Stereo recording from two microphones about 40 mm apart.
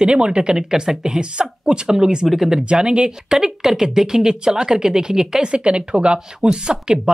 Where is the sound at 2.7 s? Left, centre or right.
Right.